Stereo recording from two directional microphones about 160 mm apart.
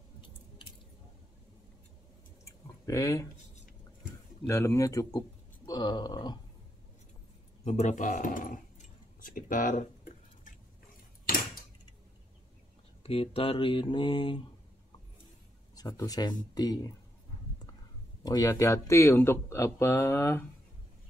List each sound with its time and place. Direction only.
2.4 s drip: 20° left (ahead or behind)
4.5 s speech: 20° left (ahead or behind)
7.6 s speech: 45° left (ahead or behind)
9.2 s whispering: 55° left (ahead or behind)
13.0 s speech: 35° left (ahead or behind)
15.7 s speech: 25° left (ahead or behind)
18.2 s speech: 20° left (ahead or behind)